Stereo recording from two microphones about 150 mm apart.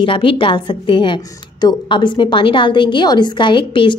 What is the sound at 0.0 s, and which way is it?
A woman's voice, 35° left (ahead or behind).